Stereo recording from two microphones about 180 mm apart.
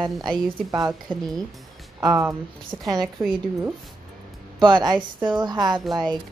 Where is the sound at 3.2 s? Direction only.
Centre (ahead or behind).